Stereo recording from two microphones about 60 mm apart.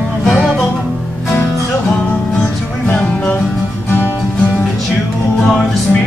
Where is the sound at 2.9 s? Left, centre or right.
Left.